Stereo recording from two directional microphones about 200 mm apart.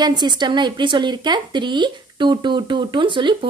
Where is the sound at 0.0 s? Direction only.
20° right (ahead or behind).